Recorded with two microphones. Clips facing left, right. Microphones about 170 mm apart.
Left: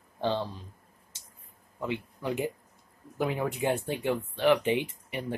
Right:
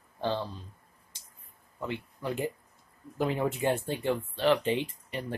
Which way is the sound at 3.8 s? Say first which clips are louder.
Even; 15° left (ahead or behind).